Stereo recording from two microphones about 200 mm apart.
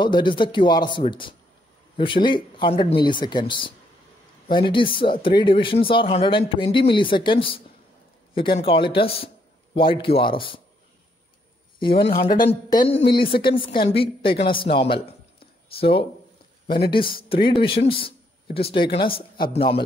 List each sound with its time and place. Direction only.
0.0 s speech: 25° left (ahead or behind)
11.8 s speech: 25° left (ahead or behind)
17.8 s a sound: 25° left (ahead or behind)
18.7 s speech: 25° left (ahead or behind)